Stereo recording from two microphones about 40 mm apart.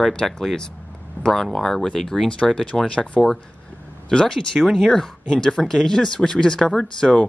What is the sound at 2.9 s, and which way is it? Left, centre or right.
Speech, left.